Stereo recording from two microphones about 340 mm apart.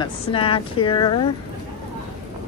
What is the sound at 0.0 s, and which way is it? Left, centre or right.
A woman's voice, centre.